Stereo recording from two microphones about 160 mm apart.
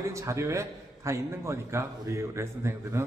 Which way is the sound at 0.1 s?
20° right (ahead or behind).